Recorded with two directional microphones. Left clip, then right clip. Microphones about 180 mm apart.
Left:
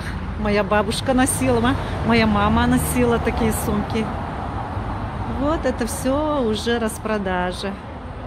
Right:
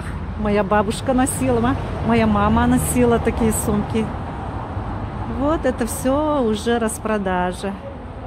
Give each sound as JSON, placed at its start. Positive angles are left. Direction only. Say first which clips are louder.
{"t": 0.4, "sound": "speech", "louder": "right 1 dB", "side_deg": -10}
{"t": 5.5, "sound": "speech", "louder": "right 2 dB", "side_deg": -20}